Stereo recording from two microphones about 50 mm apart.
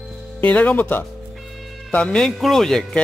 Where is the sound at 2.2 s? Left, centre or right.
Centre.